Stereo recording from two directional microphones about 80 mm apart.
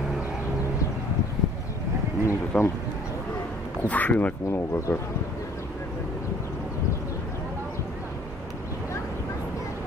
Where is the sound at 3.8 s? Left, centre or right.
Centre.